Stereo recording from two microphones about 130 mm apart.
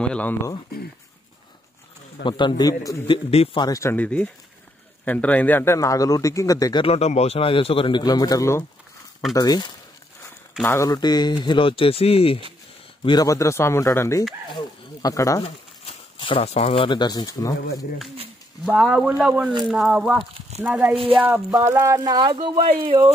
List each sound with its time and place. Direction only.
0.0 s speech: 10° left (ahead or behind)
2.2 s speech: 35° left (ahead or behind)
3.1 s a man's voice: 50° left (ahead or behind)
3.5 s a man's voice: 30° left (ahead or behind)
3.9 s a man's voice: 10° left (ahead or behind); by 6.8 s 25° left (ahead or behind)
6.8 s a man's voice: 50° left (ahead or behind); by 9.7 s 30° left (ahead or behind)
10.6 s speech: 15° left (ahead or behind)
10.9 s speech: 30° left (ahead or behind); by 12.4 s 50° left (ahead or behind)
13.0 s a man's voice: 30° left (ahead or behind)
15.4 s speech: 45° left (ahead or behind); by 17.8 s 25° left (ahead or behind)
18.7 s speech: 5° right (ahead or behind)
20.9 s speech: 45° right (ahead or behind)
21.5 s speech: 20° right (ahead or behind); by 23.0 s 45° right (ahead or behind)